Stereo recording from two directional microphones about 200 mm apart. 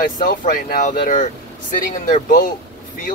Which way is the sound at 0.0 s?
45° left (ahead or behind).